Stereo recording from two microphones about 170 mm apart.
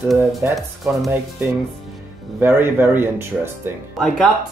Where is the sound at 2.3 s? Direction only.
10° right (ahead or behind).